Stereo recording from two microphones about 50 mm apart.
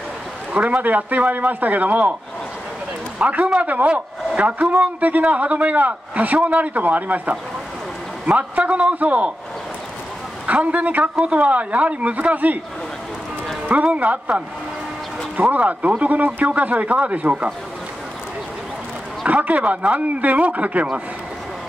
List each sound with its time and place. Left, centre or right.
0.5 s a man's voice: right
3.2 s a man's voice: right
10.4 s speech: right
13.9 s a man's voice: right
19.2 s speech: right